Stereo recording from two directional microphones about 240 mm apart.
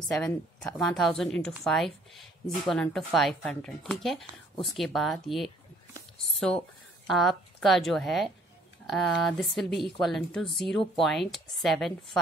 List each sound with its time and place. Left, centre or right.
0.1 s speech: centre